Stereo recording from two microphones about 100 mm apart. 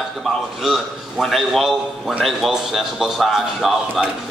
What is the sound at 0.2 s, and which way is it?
A man's voice, 5° right (ahead or behind).